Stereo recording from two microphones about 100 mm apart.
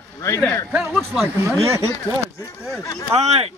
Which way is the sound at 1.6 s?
30° right (ahead or behind).